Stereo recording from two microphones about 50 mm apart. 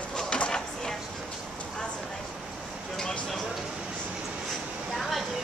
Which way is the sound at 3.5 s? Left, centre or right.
Centre.